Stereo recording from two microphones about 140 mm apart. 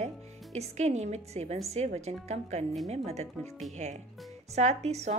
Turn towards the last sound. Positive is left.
turn(degrees=-50)  # may be behind; listen again after turning